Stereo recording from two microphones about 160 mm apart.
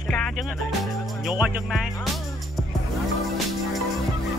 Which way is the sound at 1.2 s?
5° right (ahead or behind).